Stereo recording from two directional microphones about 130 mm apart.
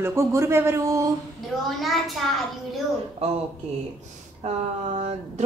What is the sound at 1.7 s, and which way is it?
Speech, centre (ahead or behind).